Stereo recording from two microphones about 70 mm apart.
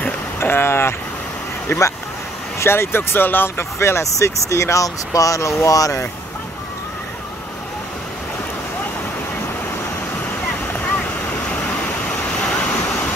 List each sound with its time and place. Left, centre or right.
0.4 s boat: left
1.7 s speech: left
10.9 s waves: left